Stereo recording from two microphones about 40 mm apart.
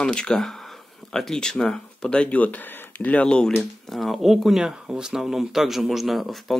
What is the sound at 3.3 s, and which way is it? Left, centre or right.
Speech, left.